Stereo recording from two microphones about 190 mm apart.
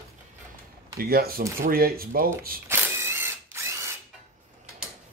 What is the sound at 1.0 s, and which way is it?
Speech, 55° right (ahead or behind).